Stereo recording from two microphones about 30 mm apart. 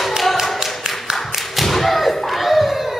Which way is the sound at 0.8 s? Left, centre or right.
Right.